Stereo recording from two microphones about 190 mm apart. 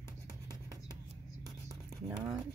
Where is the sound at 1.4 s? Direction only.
20° right (ahead or behind).